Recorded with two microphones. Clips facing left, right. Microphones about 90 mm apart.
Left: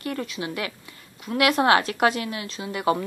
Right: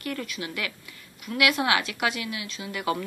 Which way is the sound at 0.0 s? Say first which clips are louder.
Left 3 dB; 30° left (ahead or behind).